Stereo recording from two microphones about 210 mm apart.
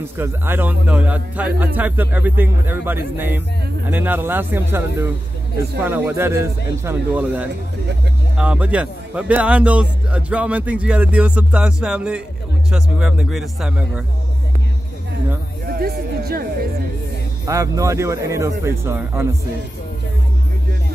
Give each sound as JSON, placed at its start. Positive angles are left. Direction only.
{"t": 0.2, "sound": "a man's voice", "side_deg": -10}
{"t": 15.6, "sound": "music", "side_deg": -45}
{"t": 17.5, "sound": "a man's voice", "side_deg": -15}